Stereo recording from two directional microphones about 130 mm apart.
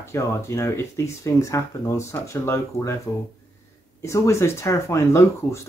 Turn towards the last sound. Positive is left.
turn(degrees=20)  # may be behind; listen again after turning